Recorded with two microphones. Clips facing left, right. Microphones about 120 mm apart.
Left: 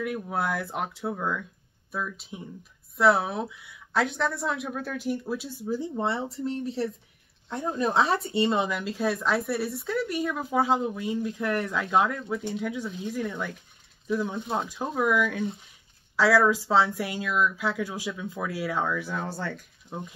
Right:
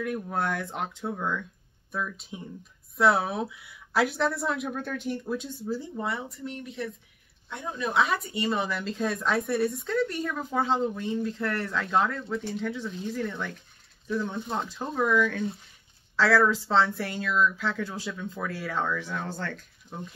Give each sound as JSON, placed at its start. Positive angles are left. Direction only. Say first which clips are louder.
{"t": 0.0, "sound": "speech", "louder": "even", "side_deg": 5}